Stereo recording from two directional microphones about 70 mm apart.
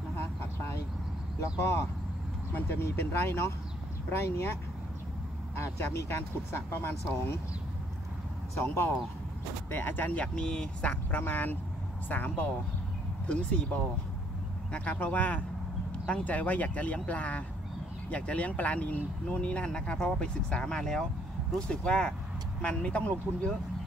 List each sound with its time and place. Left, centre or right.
2.5 s speech: left
5.6 s speech: left
8.5 s speech: left
10.2 s speech: centre